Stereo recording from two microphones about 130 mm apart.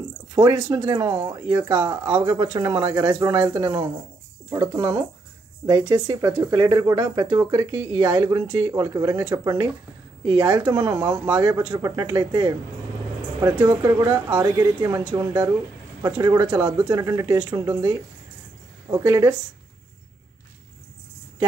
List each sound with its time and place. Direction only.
0.3 s speech: 30° right (ahead or behind)
1.7 s speech: 35° right (ahead or behind)
2.8 s speech: 15° right (ahead or behind)
16.4 s speech: 10° right (ahead or behind)
16.8 s speech: 25° right (ahead or behind)